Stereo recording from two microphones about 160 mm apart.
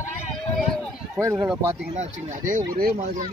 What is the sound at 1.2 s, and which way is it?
Speech, 15° right (ahead or behind).